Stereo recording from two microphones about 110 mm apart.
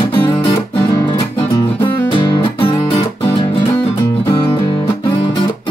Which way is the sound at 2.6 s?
50° left (ahead or behind).